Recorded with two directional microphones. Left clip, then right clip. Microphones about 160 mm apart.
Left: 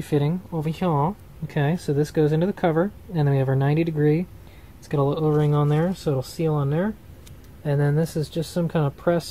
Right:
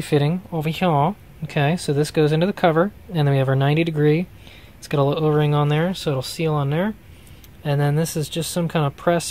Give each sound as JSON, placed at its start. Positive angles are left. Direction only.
{"t": 0.0, "sound": "speech", "side_deg": -15}